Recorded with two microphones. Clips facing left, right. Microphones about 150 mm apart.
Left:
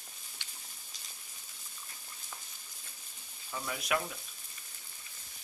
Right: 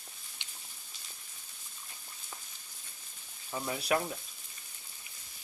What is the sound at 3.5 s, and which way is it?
Speech, 30° right (ahead or behind).